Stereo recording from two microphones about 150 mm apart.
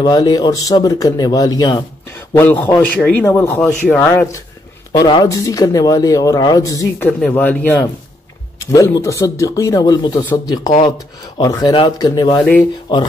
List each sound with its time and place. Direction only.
0.0 s speech: 25° left (ahead or behind)
2.3 s speech: 10° left (ahead or behind)
4.9 s speech: 30° left (ahead or behind)
7.0 s speech: 10° left (ahead or behind); by 10.4 s 25° left (ahead or behind)
11.4 s speech: 30° left (ahead or behind)
12.4 s speech: 10° left (ahead or behind)